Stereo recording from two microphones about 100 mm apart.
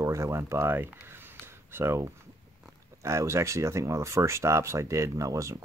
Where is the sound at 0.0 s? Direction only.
30° right (ahead or behind).